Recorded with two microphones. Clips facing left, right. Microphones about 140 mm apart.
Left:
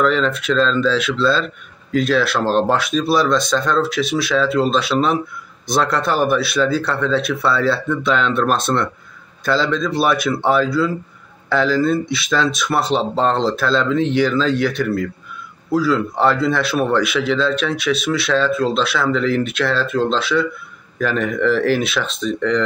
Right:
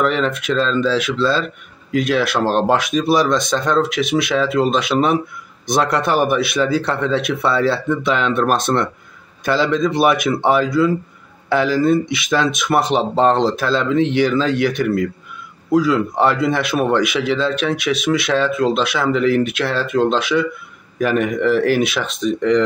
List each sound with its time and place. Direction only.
0.0 s speech: 15° right (ahead or behind)
15.7 s speech: 15° right (ahead or behind)